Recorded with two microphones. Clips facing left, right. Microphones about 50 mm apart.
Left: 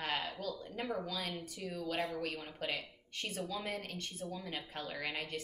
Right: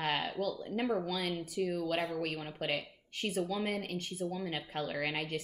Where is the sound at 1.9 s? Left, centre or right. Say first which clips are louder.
Right 3 dB; right.